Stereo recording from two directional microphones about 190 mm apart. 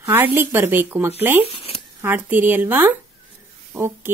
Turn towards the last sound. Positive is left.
turn(degrees=-10)  # may be behind; listen again after turning